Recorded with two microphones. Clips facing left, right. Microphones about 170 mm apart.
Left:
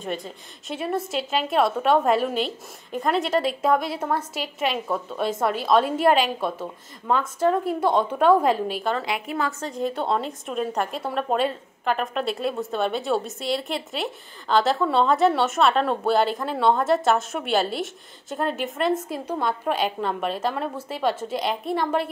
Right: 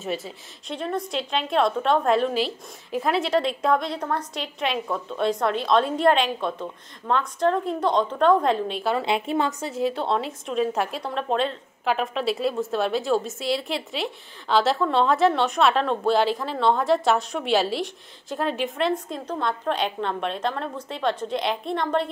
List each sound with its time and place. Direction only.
0.0 s a woman's voice: 5° right (ahead or behind)
0.7 s a woman's voice: 5° left (ahead or behind)
9.0 s a woman's voice: 25° right (ahead or behind)
9.5 s a woman's voice: 10° right (ahead or behind)